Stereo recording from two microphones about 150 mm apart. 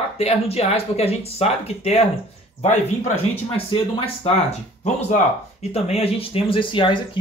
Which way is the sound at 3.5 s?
40° left (ahead or behind).